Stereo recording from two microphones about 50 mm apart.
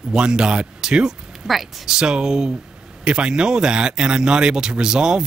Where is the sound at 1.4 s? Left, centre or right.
Centre.